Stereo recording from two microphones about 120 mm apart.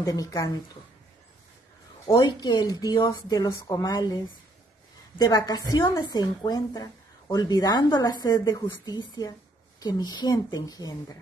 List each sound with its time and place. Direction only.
0.0 s a woman's voice: 30° left (ahead or behind)
2.0 s a woman's voice: 35° left (ahead or behind)
5.2 s a woman's voice: 30° left (ahead or behind)